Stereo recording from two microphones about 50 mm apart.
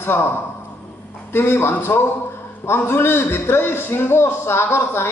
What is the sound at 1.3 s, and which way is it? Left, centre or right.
A man's voice, left.